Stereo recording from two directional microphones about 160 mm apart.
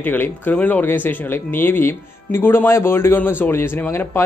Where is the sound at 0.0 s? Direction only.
10° left (ahead or behind).